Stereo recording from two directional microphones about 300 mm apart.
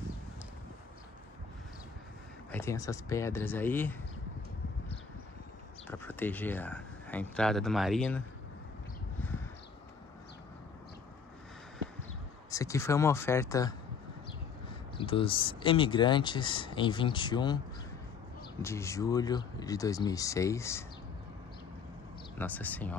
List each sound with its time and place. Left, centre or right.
2.5 s speech: centre
5.9 s speech: centre
12.4 s speech: centre
15.0 s speech: centre
22.4 s speech: centre